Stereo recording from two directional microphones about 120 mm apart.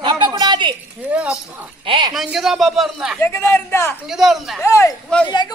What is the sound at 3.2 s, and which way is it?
Speech, 20° left (ahead or behind).